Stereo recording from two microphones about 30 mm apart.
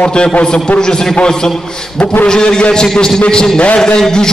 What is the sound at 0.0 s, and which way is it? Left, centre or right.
A man's voice, left.